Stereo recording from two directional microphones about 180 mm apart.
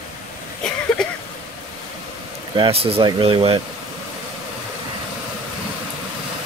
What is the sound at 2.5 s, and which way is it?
Speech, 30° right (ahead or behind).